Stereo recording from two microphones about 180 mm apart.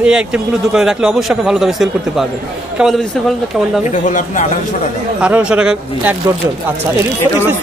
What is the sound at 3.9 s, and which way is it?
Speech, 45° left (ahead or behind).